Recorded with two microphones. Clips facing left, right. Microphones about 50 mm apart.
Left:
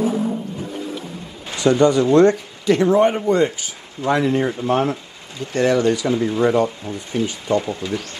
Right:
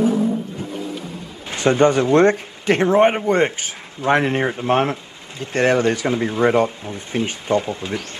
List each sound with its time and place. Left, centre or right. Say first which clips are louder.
1.5 s speech: even; right